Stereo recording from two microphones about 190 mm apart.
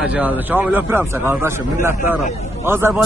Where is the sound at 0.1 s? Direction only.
10° right (ahead or behind).